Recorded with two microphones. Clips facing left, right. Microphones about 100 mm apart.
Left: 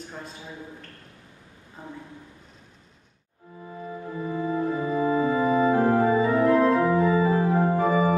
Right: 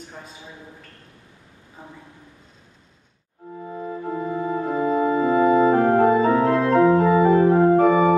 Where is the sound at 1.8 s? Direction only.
15° right (ahead or behind).